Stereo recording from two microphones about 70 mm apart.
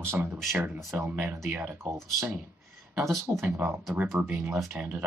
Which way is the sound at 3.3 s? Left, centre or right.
Right.